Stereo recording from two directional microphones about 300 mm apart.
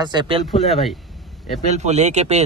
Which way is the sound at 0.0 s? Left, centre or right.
Centre.